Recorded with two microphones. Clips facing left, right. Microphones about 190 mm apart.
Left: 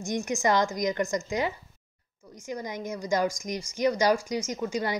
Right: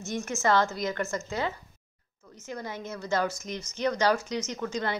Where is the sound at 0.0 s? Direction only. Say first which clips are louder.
Left 2 dB; 15° left (ahead or behind).